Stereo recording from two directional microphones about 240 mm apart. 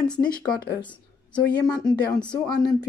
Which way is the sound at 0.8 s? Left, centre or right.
Centre.